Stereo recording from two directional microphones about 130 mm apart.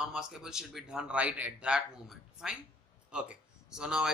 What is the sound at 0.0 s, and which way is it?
Speech, 5° right (ahead or behind).